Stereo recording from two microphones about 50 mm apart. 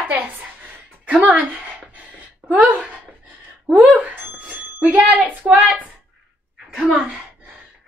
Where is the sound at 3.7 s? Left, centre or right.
Right.